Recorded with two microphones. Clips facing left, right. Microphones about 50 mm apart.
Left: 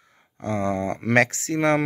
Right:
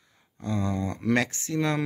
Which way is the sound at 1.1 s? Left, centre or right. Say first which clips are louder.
Left 10 dB; left.